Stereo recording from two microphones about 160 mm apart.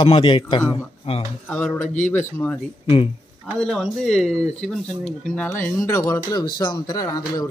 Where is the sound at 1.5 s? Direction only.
10° left (ahead or behind).